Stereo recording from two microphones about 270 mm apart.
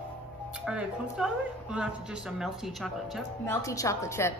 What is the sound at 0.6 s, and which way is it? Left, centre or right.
Speech, centre.